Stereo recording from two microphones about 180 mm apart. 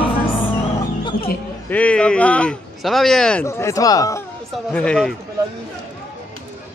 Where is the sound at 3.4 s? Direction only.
15° left (ahead or behind).